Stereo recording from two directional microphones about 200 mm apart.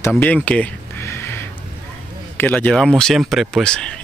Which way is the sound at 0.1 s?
5° left (ahead or behind).